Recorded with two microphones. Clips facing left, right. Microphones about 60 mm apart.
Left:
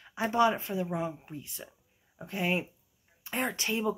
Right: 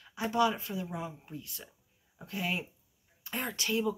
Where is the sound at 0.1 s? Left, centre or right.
Left.